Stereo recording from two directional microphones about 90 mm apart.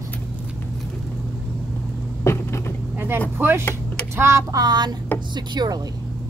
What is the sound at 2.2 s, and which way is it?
Vehicle, 30° left (ahead or behind).